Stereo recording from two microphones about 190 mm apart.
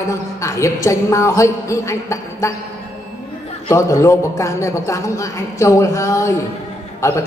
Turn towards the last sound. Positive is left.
turn(degrees=15)  # may be behind; listen again after turning